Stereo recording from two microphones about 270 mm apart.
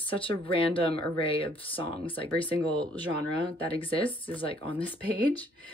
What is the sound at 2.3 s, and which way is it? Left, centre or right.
Speech, centre.